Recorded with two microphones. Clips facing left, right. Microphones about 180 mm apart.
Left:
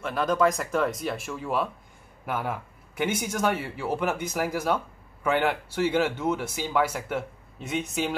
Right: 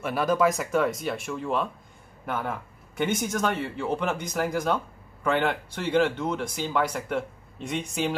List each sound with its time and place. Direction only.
0.0 s speech: 5° right (ahead or behind)